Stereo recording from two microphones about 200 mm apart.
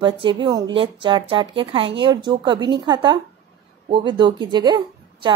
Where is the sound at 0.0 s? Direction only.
25° right (ahead or behind).